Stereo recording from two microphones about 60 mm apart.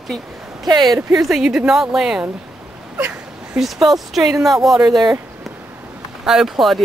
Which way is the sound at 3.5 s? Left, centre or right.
Centre.